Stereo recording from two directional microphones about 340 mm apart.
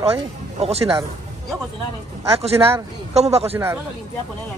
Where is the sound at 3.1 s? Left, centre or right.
Centre.